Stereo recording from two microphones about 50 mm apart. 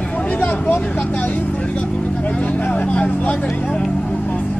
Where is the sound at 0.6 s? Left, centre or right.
Left.